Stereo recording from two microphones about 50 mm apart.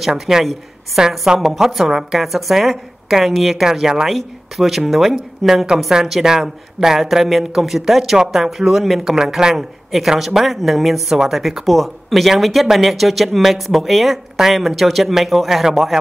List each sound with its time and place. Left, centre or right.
0.0 s speech: centre
1.5 s speech: centre